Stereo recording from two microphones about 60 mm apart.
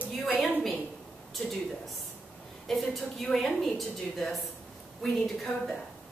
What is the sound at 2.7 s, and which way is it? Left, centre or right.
A woman's voice, centre.